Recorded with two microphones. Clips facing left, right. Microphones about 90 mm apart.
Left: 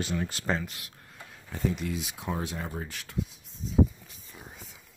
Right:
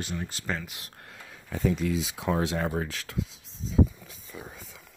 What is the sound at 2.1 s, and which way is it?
Speech, 90° right.